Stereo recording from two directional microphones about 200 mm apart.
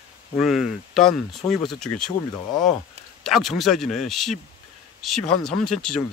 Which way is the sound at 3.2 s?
Centre (ahead or behind).